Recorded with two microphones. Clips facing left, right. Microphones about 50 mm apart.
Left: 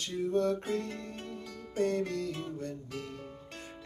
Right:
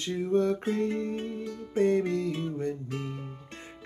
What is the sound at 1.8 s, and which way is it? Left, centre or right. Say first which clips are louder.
Music: right 6 dB; right.